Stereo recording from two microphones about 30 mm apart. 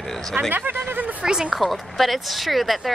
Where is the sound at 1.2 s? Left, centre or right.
Right.